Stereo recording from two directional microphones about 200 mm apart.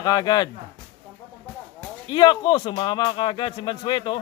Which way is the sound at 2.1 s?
20° left (ahead or behind).